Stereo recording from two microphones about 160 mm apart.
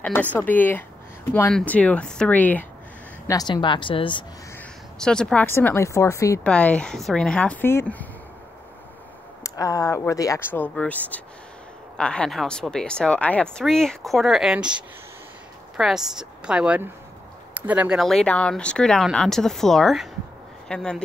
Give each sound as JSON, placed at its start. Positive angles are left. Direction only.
{"t": 0.0, "sound": "a woman's voice", "side_deg": 10}
{"t": 3.3, "sound": "speech", "side_deg": 20}
{"t": 4.9, "sound": "a woman's voice", "side_deg": 5}
{"t": 6.4, "sound": "a woman's voice", "side_deg": 5}
{"t": 9.4, "sound": "speech", "side_deg": 20}
{"t": 15.8, "sound": "speech", "side_deg": -5}